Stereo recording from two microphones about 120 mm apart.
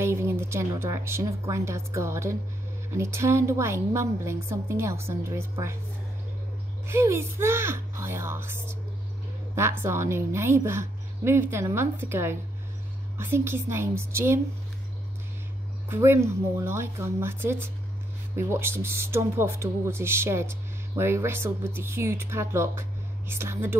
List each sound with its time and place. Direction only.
0.0 s speech: 20° right (ahead or behind)
6.9 s speech: 20° right (ahead or behind)
15.9 s speech: 20° right (ahead or behind)